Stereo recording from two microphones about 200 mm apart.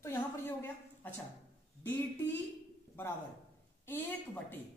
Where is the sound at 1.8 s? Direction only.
10° left (ahead or behind).